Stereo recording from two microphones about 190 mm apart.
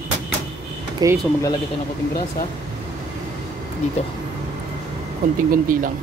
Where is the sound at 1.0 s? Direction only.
20° right (ahead or behind).